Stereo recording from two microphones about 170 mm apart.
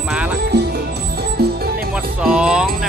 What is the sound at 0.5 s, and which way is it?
Music, 70° right (ahead or behind).